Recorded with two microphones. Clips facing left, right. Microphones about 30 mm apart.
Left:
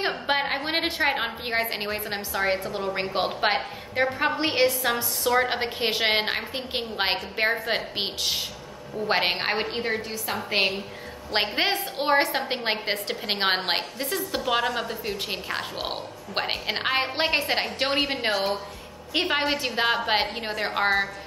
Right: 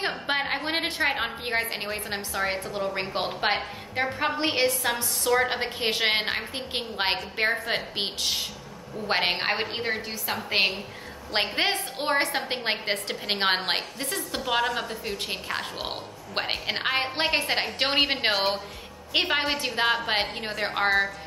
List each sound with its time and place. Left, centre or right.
0.3 s a woman's voice: centre
17.7 s a woman's voice: centre
19.2 s a woman's voice: centre